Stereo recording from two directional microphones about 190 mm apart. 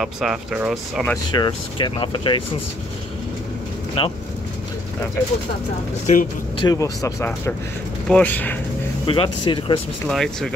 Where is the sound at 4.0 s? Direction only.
30° left (ahead or behind).